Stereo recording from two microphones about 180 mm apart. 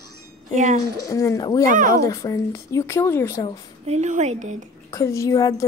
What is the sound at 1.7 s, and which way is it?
Speech, 50° right (ahead or behind).